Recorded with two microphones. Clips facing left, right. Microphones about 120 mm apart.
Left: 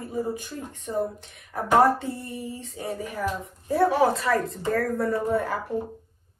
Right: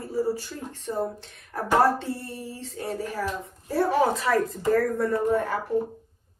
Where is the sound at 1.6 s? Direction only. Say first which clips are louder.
Left 2 dB; 15° left (ahead or behind).